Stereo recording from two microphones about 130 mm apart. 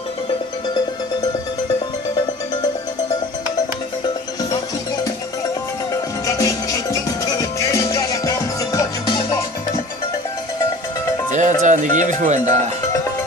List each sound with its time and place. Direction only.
6.2 s music: 25° left (ahead or behind)
9.0 s music: 40° left (ahead or behind)
11.3 s speech: 70° right (ahead or behind)